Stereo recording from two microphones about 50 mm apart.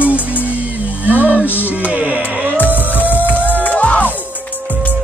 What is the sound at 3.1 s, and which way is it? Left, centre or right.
Music, left.